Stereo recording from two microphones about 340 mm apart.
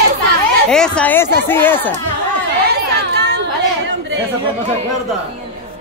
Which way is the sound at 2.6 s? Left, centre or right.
Right.